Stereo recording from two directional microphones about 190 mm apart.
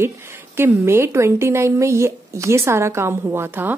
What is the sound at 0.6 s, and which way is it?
Speech, 15° right (ahead or behind).